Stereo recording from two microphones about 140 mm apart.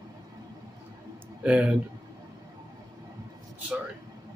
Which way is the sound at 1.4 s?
10° right (ahead or behind).